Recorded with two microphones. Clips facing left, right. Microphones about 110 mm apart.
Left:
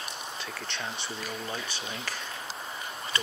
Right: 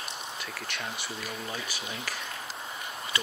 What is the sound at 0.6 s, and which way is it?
Speech, 30° left (ahead or behind).